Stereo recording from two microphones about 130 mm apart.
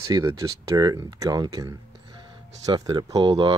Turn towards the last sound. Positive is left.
turn(degrees=-35)  # may be behind; listen again after turning